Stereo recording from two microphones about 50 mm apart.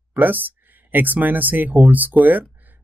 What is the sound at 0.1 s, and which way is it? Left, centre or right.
Speech, right.